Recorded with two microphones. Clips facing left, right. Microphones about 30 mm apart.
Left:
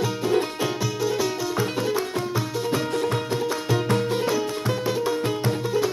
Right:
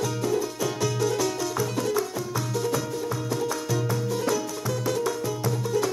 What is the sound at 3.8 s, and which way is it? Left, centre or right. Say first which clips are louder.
Music: left 5 dB; left.